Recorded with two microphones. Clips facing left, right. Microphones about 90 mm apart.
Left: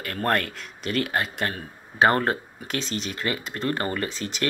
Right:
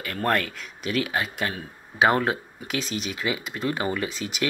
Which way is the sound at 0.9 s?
5° right (ahead or behind).